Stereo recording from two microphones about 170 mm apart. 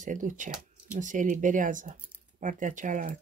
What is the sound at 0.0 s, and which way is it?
Speech, 50° right (ahead or behind).